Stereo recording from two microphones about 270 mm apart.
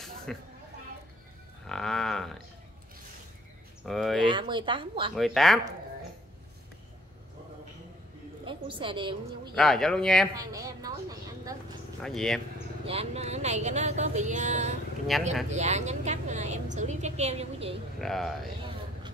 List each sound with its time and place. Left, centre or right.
0.3 s speech: centre
1.7 s a sound: centre
3.8 s speech: centre
4.2 s a woman's voice: centre
5.1 s speech: centre
8.5 s a woman's voice: centre
9.6 s speech: centre
10.3 s speech: centre
12.0 s speech: centre
12.8 s a woman's voice: right
15.1 s speech: centre
15.5 s a woman's voice: right
18.0 s speech: centre